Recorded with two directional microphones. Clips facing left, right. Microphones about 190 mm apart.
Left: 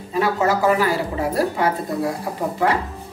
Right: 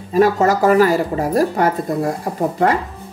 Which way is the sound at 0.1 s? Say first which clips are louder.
Right 5 dB; 45° right (ahead or behind).